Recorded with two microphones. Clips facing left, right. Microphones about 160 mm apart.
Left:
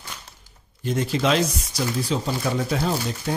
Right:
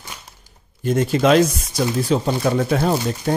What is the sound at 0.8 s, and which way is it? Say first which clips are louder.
Speech: right 6 dB; 50° right (ahead or behind).